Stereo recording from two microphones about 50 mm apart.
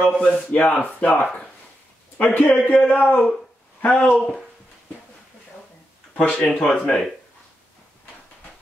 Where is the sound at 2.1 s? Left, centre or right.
Left.